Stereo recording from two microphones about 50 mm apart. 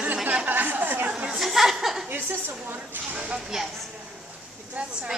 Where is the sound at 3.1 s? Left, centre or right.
Right.